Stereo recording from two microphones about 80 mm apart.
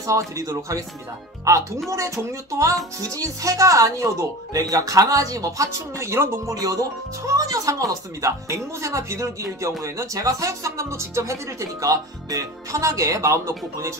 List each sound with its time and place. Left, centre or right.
0.0 s speech: right
6.5 s speech: right